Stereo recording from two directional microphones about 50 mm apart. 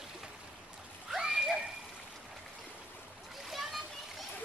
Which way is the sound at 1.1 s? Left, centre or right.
Centre.